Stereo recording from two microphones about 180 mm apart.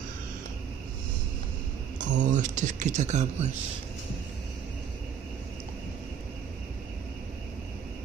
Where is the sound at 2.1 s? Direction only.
45° right (ahead or behind).